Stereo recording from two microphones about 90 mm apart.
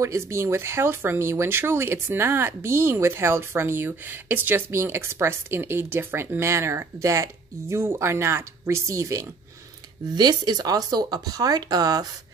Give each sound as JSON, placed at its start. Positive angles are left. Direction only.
{"t": 0.0, "sound": "speech", "side_deg": -30}
{"t": 10.1, "sound": "speech", "side_deg": -50}